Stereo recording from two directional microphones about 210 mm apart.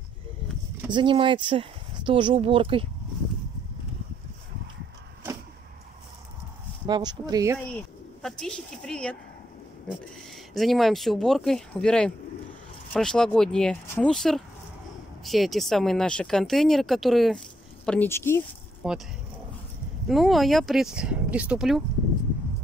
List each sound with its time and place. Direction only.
0.8 s speech: 20° right (ahead or behind)
6.9 s speech: 20° right (ahead or behind)
7.7 s speech: 5° left (ahead or behind)
10.5 s a woman's voice: centre (ahead or behind)
18.8 s speech: 5° right (ahead or behind)
20.1 s speech: centre (ahead or behind)